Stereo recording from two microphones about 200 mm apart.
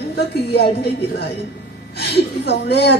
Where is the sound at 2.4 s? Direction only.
55° left (ahead or behind).